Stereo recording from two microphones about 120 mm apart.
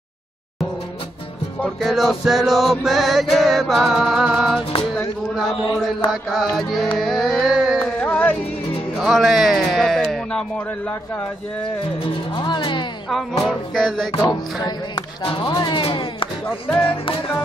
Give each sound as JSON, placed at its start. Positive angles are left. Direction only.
{"t": 1.8, "sound": "music", "side_deg": 0}
{"t": 6.3, "sound": "music", "side_deg": 0}
{"t": 7.0, "sound": "carnatic music", "side_deg": 0}
{"t": 8.0, "sound": "music", "side_deg": 10}
{"t": 8.9, "sound": "speech", "side_deg": -5}
{"t": 12.4, "sound": "speech", "side_deg": 40}
{"t": 13.1, "sound": "music", "side_deg": 5}
{"t": 14.1, "sound": "speech", "side_deg": 40}